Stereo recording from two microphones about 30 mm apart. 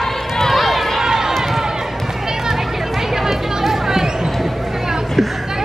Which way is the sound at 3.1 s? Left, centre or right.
Centre.